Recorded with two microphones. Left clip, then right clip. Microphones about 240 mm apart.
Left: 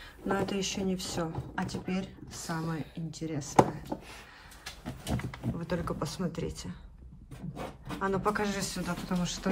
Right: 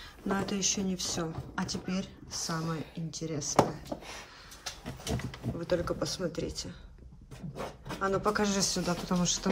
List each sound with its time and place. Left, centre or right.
0.3 s speech: centre
5.1 s speech: centre